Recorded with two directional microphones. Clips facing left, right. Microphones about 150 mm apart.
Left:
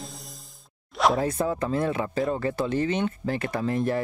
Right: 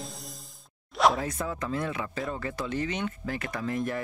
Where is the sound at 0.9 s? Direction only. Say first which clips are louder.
Left 1 dB; centre (ahead or behind).